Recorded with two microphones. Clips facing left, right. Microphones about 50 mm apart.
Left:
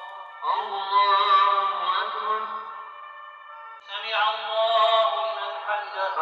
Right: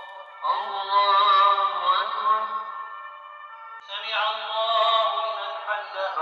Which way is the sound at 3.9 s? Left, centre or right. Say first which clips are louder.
Left 2 dB; centre.